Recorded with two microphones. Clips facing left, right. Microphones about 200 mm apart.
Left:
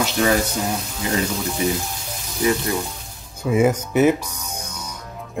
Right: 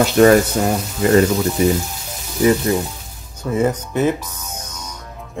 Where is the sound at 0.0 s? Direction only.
50° right (ahead or behind).